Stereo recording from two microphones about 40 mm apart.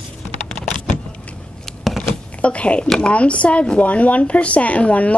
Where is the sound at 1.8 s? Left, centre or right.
Centre.